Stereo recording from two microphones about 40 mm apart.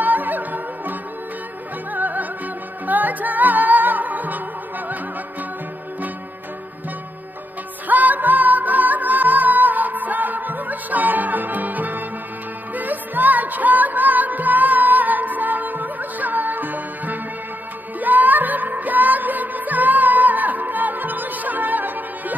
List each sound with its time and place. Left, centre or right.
0.0 s music: right
2.0 s music: right
7.9 s music: right